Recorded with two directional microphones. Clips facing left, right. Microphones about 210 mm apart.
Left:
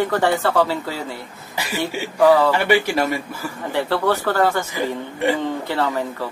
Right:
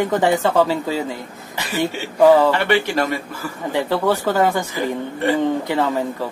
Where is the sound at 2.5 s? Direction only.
10° left (ahead or behind).